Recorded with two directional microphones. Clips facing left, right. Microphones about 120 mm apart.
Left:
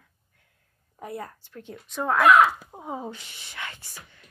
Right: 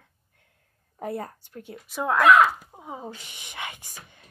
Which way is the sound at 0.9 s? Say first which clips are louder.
Right 4 dB; 35° right (ahead or behind).